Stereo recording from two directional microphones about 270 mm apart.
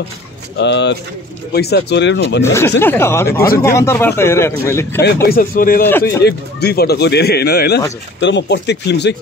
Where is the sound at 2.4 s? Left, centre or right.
Centre.